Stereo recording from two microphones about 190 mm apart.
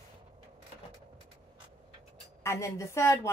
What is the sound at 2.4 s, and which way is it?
Speech, 15° left (ahead or behind).